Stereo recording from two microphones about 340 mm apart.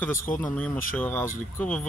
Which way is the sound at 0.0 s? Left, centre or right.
Centre.